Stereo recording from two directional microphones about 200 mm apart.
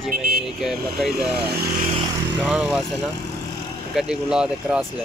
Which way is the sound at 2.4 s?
5° right (ahead or behind).